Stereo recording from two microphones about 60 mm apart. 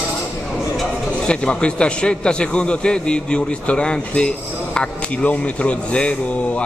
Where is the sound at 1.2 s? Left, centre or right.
Centre.